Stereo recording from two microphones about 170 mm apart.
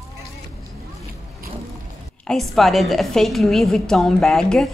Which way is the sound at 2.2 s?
Centre (ahead or behind).